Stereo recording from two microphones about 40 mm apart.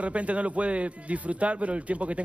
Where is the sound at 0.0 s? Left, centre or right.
Right.